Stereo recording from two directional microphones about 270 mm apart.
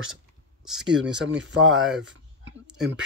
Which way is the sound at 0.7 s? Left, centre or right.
Centre.